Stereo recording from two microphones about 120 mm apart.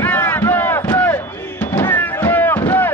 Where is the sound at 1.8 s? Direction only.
15° left (ahead or behind).